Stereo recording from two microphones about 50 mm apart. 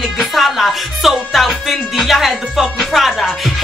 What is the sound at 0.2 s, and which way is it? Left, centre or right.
Music, centre.